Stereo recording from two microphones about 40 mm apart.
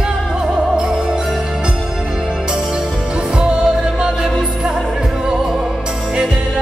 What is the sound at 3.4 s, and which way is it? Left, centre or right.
Music, right.